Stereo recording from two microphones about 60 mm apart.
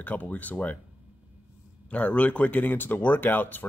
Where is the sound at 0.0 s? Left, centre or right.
Left.